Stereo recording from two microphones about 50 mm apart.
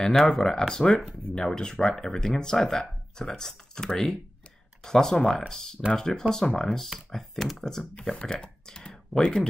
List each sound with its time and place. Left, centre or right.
0.0 s speech: centre
8.0 s speech: centre